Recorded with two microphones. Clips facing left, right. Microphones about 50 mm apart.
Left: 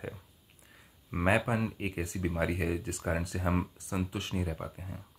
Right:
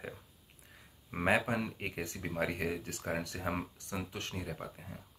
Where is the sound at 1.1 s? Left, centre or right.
Centre.